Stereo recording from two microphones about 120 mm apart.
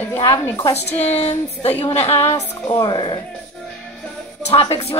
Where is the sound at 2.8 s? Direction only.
45° left (ahead or behind).